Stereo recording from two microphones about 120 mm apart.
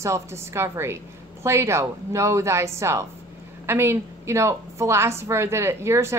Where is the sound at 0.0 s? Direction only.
25° right (ahead or behind).